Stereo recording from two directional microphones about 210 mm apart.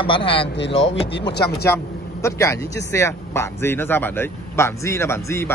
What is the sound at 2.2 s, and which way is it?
Speech, 15° left (ahead or behind).